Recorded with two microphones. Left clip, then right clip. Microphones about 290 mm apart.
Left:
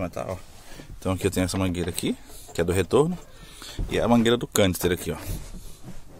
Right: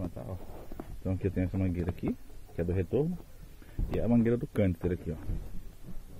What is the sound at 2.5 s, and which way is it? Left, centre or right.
Speech, left.